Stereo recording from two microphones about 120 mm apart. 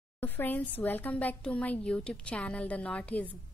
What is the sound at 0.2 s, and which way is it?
A woman's voice, 15° left (ahead or behind).